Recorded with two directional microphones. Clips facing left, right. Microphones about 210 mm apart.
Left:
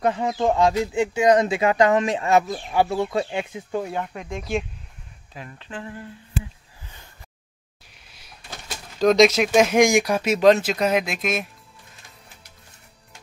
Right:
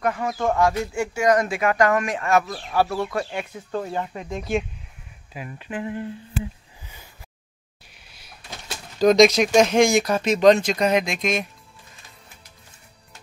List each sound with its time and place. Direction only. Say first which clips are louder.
0.0 s speech: left 2 dB; 20° left (ahead or behind); by 6.0 s 15° right (ahead or behind)
9.0 s speech: right 1 dB; centre (ahead or behind)